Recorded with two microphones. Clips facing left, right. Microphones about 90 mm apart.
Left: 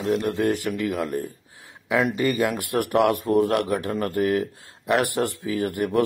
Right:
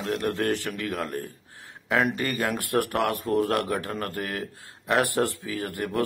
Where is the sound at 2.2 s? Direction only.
15° left (ahead or behind).